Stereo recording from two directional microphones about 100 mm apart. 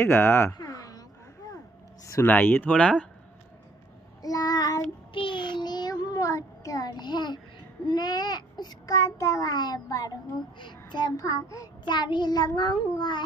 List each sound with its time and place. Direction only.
0.0 s speech: 25° left (ahead or behind)
0.6 s a sound: 40° left (ahead or behind)
2.2 s speech: 20° left (ahead or behind)
4.2 s child singing: 40° left (ahead or behind)
5.1 s child singing: 55° left (ahead or behind)
7.8 s a child's voice: 45° left (ahead or behind)
10.6 s a child's voice: 50° left (ahead or behind); by 11.7 s 35° left (ahead or behind)
11.8 s a child's voice: 50° left (ahead or behind)